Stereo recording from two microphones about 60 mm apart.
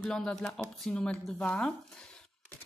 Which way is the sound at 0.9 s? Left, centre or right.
Centre.